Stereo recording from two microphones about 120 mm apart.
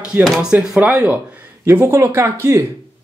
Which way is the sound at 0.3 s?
10° right (ahead or behind).